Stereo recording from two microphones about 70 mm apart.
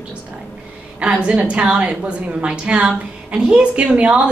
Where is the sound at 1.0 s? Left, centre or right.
Centre.